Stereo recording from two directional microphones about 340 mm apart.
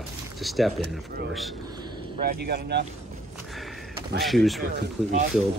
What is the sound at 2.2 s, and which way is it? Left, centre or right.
Speech, right.